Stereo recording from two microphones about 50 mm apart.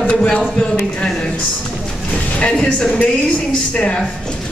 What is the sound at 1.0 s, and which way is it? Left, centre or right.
Speech, centre.